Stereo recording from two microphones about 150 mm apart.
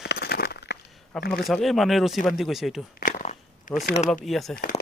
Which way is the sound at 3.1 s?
60° left (ahead or behind).